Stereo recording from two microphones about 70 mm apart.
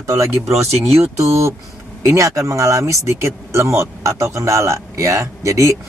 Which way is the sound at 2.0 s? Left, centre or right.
Right.